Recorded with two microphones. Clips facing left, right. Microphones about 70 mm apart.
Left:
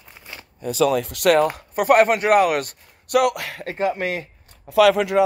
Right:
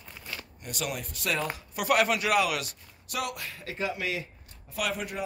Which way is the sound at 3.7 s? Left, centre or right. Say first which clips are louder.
Left 9 dB; left.